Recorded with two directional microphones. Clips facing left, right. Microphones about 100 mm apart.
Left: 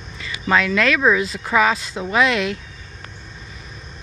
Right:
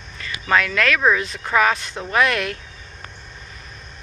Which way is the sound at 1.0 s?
10° left (ahead or behind).